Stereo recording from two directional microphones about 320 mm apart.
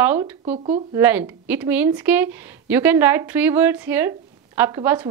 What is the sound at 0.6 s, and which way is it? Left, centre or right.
Speech, centre.